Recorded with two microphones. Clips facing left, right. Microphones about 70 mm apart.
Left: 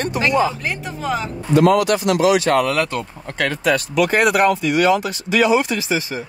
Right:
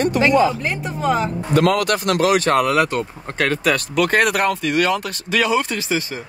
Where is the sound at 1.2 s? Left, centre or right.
Right.